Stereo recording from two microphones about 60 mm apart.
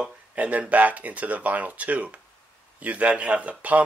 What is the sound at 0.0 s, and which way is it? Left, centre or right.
Speech, centre.